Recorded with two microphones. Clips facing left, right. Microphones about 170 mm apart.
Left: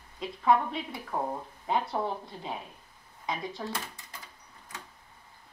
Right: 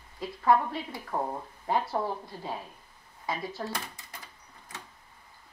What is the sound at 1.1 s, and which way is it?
Speech, 10° right (ahead or behind).